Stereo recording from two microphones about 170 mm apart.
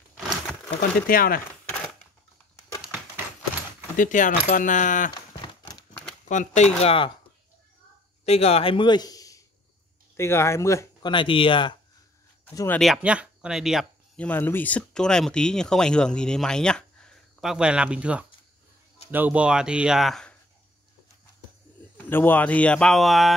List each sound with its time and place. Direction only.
0.3 s crumpling: 5° left (ahead or behind)
0.7 s speech: 60° left (ahead or behind)
3.9 s speech: 50° left (ahead or behind)
6.2 s speech: 45° left (ahead or behind)
8.3 s a man's voice: 40° left (ahead or behind); by 11.1 s 15° left (ahead or behind)
11.1 s speech: 30° left (ahead or behind)
12.4 s speech: 10° left (ahead or behind)
12.8 s speech: 5° right (ahead or behind)
21.9 s a man's voice: 10° left (ahead or behind)